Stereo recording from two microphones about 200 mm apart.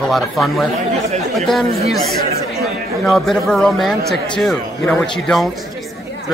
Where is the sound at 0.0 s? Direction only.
Centre (ahead or behind).